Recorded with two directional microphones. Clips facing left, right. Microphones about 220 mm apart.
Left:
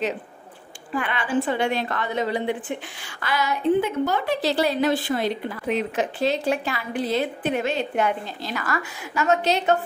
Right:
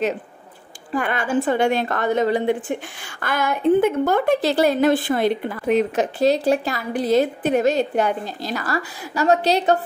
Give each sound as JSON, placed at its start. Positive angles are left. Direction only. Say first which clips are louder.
{"t": 0.9, "sound": "a woman's voice", "louder": "right 3 dB", "side_deg": -45}